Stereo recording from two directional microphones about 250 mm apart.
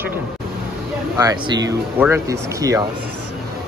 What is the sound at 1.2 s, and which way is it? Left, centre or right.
Speech, centre.